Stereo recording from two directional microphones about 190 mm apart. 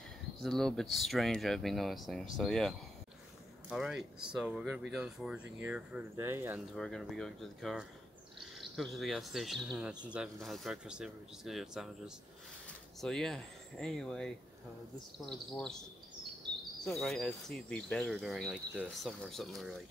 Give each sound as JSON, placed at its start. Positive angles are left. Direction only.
{"t": 0.4, "sound": "speech", "side_deg": 0}
{"t": 3.7, "sound": "speech", "side_deg": -5}
{"t": 6.7, "sound": "speech", "side_deg": 0}
{"t": 15.5, "sound": "speech", "side_deg": 5}
{"t": 16.8, "sound": "speech", "side_deg": 0}